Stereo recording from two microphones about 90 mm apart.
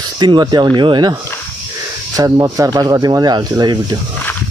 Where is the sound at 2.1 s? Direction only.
45° right (ahead or behind).